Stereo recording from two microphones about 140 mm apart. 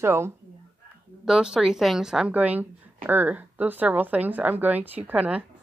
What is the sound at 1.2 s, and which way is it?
A woman's voice, 5° right (ahead or behind).